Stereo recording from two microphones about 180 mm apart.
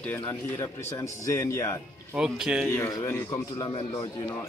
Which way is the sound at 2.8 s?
15° left (ahead or behind).